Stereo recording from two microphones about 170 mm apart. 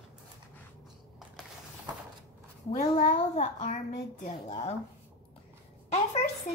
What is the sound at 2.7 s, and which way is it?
A child's voice, 45° left (ahead or behind).